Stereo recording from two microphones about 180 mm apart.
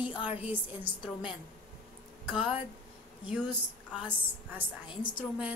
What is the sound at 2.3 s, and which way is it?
A woman's voice, 5° right (ahead or behind).